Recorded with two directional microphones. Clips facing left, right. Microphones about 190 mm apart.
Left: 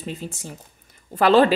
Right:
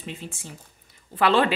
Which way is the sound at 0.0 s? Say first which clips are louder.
Left 5 dB; 40° left (ahead or behind).